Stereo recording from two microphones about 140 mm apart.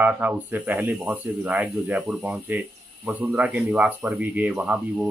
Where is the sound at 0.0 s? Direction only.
10° right (ahead or behind).